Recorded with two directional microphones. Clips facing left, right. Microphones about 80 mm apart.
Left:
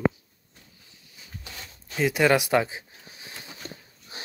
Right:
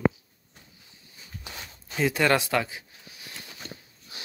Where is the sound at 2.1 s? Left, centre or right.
Centre.